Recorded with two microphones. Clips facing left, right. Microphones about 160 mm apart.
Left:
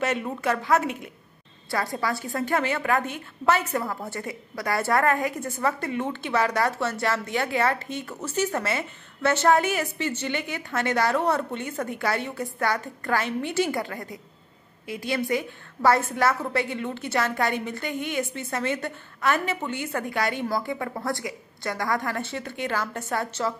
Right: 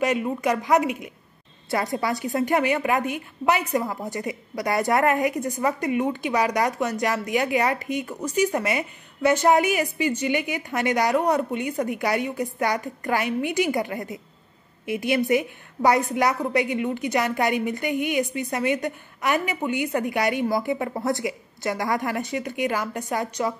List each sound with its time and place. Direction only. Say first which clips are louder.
0.0 s a woman's voice: right 3 dB; 10° right (ahead or behind)